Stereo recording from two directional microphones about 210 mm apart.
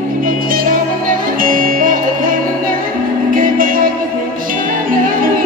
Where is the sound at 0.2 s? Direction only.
40° right (ahead or behind).